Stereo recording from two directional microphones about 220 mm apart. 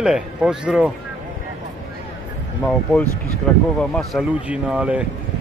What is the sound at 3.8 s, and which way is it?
A man's voice, centre (ahead or behind).